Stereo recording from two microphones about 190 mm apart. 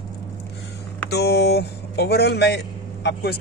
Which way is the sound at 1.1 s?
60° left (ahead or behind).